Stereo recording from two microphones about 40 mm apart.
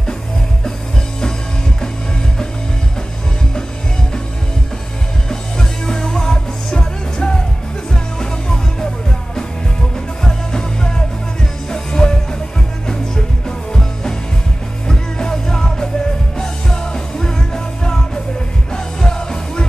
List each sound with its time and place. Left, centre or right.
5.3 s music: centre
14.9 s music: centre